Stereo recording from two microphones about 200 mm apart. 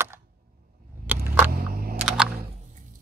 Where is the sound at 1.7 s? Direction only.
50° right (ahead or behind).